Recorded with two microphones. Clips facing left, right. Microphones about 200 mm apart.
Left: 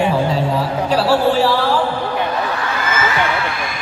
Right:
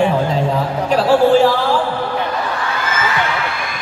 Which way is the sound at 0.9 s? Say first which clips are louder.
Right 4 dB; 35° left (ahead or behind).